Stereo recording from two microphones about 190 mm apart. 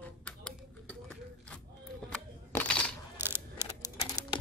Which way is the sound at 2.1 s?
5° left (ahead or behind).